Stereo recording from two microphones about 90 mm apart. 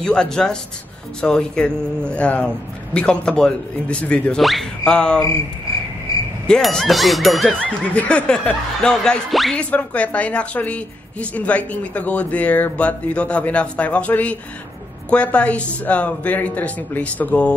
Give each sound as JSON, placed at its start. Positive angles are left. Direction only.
{"t": 0.0, "sound": "a woman's voice", "side_deg": 10}
{"t": 4.4, "sound": "a woman's voice", "side_deg": 0}
{"t": 6.4, "sound": "speech", "side_deg": 5}
{"t": 7.8, "sound": "a woman's voice", "side_deg": 15}
{"t": 9.6, "sound": "a woman's voice", "side_deg": 15}